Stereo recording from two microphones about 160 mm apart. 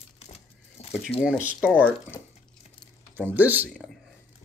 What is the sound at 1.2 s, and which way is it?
Speech, 5° right (ahead or behind).